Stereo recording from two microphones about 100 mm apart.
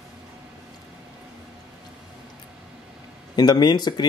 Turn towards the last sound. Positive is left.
turn(degrees=45)  # may be behind; listen again after turning